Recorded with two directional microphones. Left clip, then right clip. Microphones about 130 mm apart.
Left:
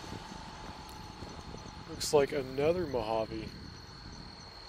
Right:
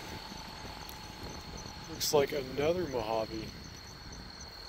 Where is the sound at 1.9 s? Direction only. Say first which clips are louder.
Left 1 dB; 30° left (ahead or behind).